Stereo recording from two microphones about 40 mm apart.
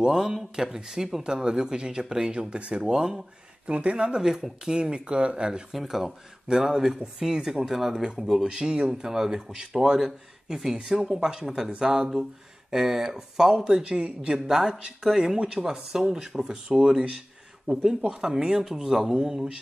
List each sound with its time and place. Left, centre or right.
0.0 s speech: centre
3.6 s speech: right
5.7 s speech: centre